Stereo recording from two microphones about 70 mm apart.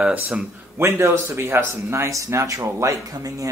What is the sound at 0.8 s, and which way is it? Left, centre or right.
Speech, right.